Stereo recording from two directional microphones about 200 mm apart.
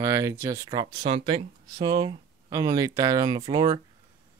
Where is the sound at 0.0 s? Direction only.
15° right (ahead or behind).